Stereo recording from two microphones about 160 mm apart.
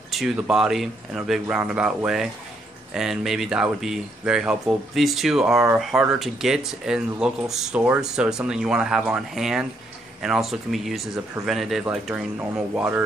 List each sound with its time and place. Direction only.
0.1 s speech: centre (ahead or behind)